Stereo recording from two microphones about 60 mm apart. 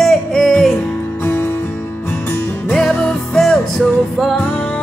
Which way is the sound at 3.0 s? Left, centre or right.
Centre.